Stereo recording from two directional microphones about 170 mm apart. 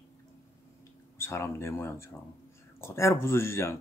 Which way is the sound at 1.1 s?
15° left (ahead or behind).